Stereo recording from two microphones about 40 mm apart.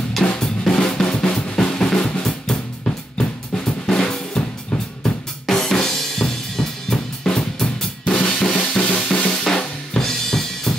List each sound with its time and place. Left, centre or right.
0.4 s drum: left
2.5 s drum kit: left
8.2 s drum kit: left
8.7 s drum: left
9.3 s drum kit: centre